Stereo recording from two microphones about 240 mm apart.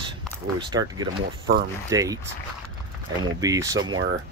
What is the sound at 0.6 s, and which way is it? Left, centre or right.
Speech, centre.